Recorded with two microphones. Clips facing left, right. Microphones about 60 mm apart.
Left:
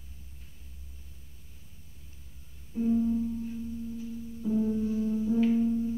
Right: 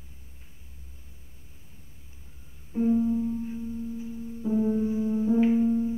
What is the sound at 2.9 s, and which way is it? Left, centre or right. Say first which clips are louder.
Music: even; right.